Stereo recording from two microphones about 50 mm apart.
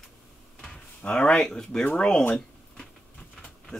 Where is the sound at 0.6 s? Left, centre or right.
Left.